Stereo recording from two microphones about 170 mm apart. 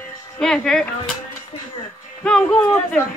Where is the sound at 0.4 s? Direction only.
5° left (ahead or behind).